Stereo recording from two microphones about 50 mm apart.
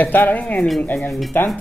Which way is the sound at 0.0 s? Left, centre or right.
Left.